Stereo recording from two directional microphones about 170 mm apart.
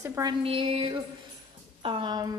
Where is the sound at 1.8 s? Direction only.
30° right (ahead or behind).